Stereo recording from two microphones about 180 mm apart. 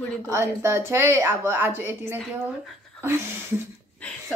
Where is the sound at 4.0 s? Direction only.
5° left (ahead or behind).